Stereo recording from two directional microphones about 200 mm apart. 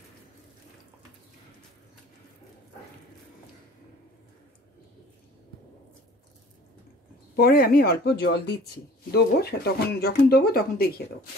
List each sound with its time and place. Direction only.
7.3 s speech: 50° left (ahead or behind)